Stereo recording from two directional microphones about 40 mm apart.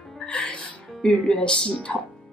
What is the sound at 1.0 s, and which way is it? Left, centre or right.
Speech, centre.